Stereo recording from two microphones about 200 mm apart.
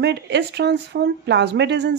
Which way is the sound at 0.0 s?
60° right (ahead or behind).